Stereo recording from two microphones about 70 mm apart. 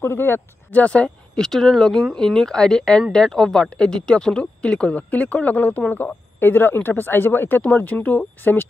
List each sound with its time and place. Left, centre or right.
0.0 s speech: left
0.7 s speech: centre